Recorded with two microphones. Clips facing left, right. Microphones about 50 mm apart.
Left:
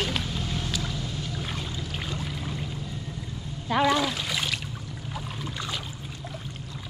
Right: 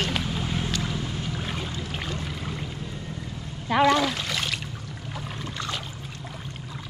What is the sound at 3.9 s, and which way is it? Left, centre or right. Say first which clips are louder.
Splash: right 2 dB; centre.